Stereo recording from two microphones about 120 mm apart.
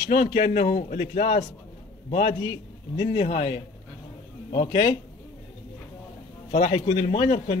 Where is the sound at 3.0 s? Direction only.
45° left (ahead or behind).